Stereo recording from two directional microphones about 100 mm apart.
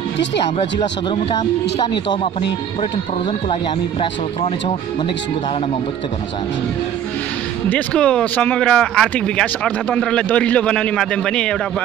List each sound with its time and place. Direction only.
4.0 s speech: 70° left (ahead or behind)
7.7 s speech: 10° left (ahead or behind)